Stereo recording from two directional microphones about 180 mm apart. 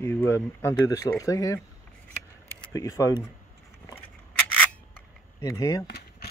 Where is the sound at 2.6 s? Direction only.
20° left (ahead or behind).